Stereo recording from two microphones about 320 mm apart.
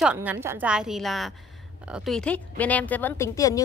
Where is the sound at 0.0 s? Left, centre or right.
Centre.